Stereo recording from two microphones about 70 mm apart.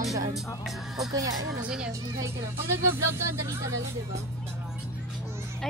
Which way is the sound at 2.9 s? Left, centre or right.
Right.